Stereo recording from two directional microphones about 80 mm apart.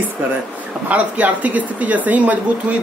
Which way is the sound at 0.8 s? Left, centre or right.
Centre.